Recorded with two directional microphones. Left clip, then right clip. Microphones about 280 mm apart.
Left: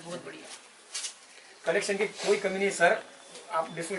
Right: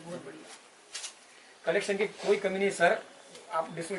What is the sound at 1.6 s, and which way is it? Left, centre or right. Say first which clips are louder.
A man's voice: left 1 dB; centre.